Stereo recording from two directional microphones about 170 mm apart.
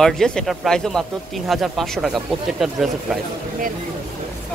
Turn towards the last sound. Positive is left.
turn(degrees=0)  # may be behind; listen again after turning